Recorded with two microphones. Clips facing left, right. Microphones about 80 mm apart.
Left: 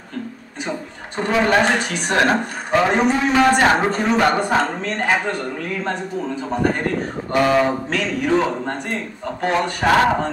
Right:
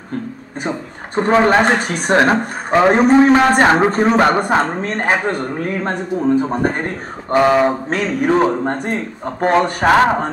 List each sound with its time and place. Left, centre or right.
1.1 s speech: right
7.3 s speech: right